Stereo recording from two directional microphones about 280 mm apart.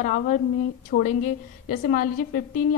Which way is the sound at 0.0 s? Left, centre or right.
Left.